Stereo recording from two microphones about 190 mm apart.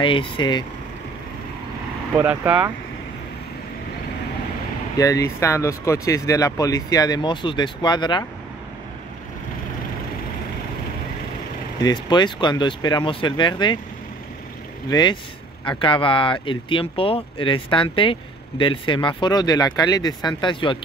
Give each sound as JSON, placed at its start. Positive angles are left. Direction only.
{"t": 0.0, "sound": "speech", "side_deg": 25}
{"t": 2.1, "sound": "speech", "side_deg": -10}
{"t": 4.9, "sound": "speech", "side_deg": 15}
{"t": 11.8, "sound": "speech", "side_deg": 25}
{"t": 14.9, "sound": "speech", "side_deg": 20}